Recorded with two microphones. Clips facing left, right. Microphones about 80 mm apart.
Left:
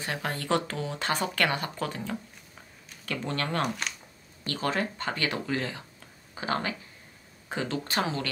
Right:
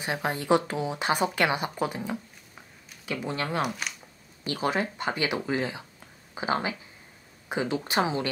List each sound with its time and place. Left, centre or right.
0.0 s speech: centre